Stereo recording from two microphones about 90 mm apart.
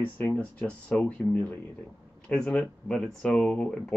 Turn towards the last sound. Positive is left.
turn(degrees=10)  # may be behind; listen again after turning